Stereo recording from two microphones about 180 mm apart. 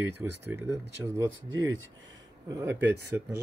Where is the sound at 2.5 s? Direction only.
15° right (ahead or behind).